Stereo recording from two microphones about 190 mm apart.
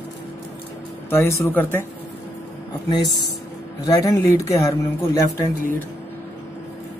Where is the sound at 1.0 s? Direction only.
15° left (ahead or behind).